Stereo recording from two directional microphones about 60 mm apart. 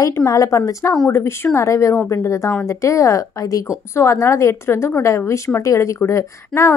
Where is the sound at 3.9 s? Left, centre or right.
Left.